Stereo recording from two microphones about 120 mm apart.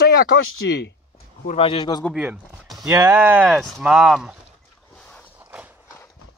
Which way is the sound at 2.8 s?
20° right (ahead or behind).